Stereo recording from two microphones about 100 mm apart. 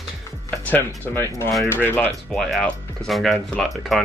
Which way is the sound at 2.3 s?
5° left (ahead or behind).